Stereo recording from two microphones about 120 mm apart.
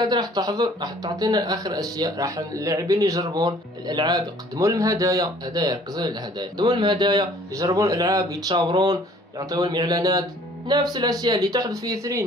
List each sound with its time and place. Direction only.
0.0 s speech: 35° right (ahead or behind)